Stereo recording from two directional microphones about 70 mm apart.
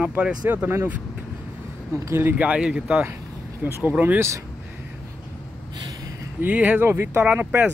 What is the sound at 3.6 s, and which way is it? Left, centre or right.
Speech, right.